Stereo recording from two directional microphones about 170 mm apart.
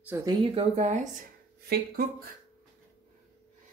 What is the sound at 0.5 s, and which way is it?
Speech, 40° right (ahead or behind).